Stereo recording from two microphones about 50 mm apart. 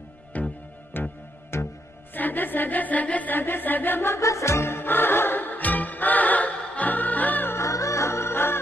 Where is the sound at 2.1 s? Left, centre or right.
Left.